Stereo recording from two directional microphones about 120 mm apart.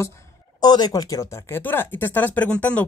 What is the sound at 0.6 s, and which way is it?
Speech, 35° left (ahead or behind).